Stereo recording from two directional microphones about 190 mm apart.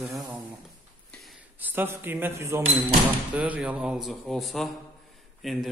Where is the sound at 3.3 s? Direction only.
5° right (ahead or behind).